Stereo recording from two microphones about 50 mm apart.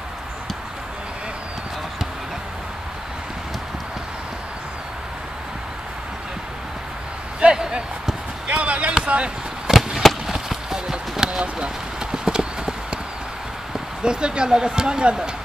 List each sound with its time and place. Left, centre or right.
7.3 s a sound: centre
8.5 s basketball bounce: right
9.0 s a sound: right
9.7 s fireworks: centre
10.3 s clip-clop: centre
14.0 s speech: centre